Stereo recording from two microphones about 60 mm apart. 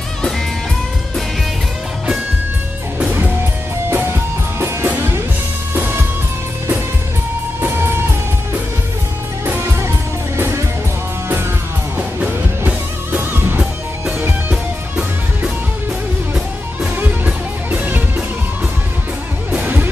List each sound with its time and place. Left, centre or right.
3.9 s music: right
7.6 s music: right
10.3 s music: right
12.2 s music: right
16.9 s music: right
19.5 s music: right